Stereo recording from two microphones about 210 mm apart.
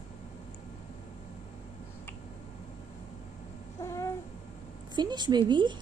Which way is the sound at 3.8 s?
15° left (ahead or behind).